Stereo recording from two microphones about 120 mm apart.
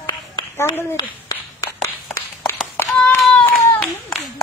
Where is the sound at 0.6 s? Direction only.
20° left (ahead or behind).